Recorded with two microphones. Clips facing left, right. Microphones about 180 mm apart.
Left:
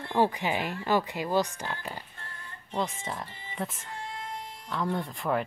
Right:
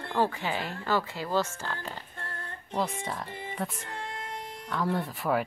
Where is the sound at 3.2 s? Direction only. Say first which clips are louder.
Right 8 dB; 55° right (ahead or behind).